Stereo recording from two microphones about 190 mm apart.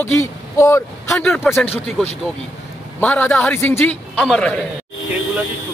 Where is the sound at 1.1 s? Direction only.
5° left (ahead or behind).